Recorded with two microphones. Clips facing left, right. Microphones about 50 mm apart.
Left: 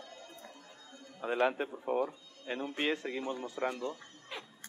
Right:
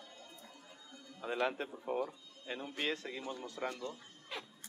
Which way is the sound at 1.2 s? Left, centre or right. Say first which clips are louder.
Left 5 dB; left.